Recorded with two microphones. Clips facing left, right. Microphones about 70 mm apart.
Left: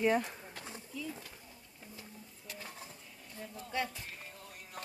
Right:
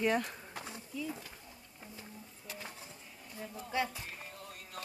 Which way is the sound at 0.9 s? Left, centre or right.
Centre.